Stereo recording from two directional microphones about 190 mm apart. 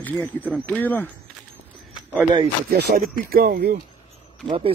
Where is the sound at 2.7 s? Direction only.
50° right (ahead or behind).